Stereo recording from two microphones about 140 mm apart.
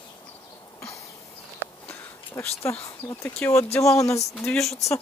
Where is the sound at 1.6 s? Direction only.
15° left (ahead or behind).